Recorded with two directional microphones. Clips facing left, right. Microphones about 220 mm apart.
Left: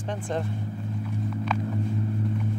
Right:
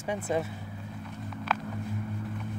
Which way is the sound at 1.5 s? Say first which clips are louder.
Left 1 dB; 5° right (ahead or behind).